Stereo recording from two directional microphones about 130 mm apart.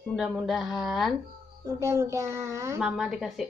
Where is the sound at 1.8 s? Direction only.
20° right (ahead or behind).